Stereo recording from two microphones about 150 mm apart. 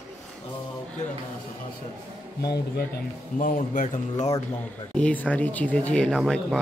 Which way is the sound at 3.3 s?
60° left (ahead or behind).